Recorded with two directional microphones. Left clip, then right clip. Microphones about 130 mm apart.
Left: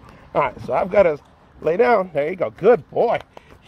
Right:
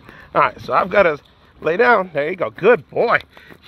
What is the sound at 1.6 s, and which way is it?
Speech, 45° right (ahead or behind).